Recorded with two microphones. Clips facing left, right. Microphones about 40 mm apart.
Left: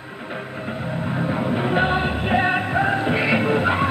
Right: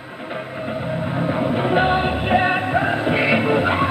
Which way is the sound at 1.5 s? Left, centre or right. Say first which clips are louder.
Right 2 dB; centre.